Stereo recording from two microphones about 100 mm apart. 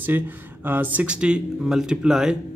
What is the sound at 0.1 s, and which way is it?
Speech, 20° right (ahead or behind).